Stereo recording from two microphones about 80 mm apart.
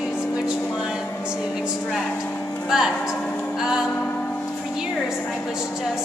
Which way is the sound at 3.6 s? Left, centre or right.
Centre.